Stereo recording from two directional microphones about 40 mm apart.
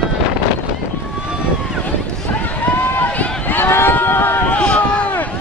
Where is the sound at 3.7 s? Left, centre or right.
Left.